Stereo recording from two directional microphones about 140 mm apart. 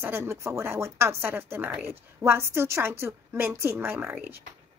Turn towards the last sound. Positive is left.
turn(degrees=-15)  # may be behind; listen again after turning